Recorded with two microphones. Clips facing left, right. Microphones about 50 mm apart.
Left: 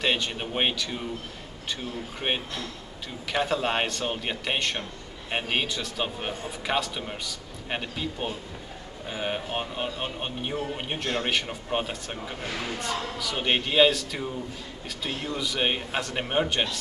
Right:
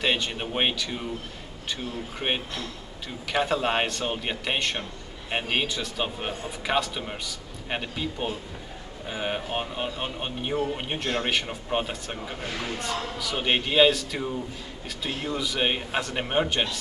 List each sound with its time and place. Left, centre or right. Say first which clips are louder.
0.0 s speech: right 1 dB; centre